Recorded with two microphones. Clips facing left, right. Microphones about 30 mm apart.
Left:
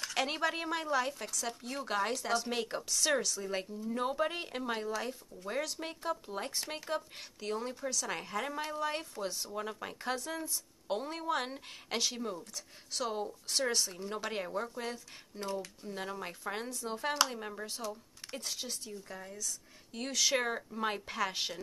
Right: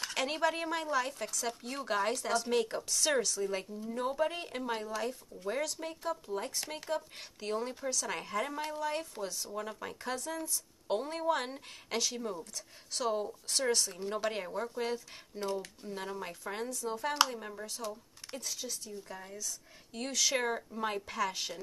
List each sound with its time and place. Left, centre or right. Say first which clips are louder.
0.1 s speech: right 1 dB; centre
6.0 s speech: right 1 dB; centre
7.2 s speech: right 2 dB; centre
10.9 s speech: right 3 dB; centre
18.4 s speech: even; left
19.0 s speech: even; centre